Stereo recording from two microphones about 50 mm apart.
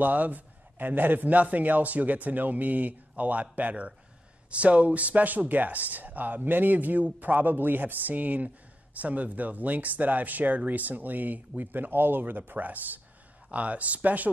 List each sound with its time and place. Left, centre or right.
0.0 s speech: right